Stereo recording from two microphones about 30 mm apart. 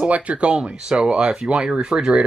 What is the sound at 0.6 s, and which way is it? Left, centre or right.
Speech, right.